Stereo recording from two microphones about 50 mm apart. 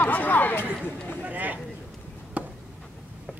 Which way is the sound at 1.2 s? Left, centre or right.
Right.